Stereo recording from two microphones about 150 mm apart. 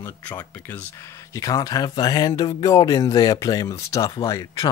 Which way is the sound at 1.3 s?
25° left (ahead or behind).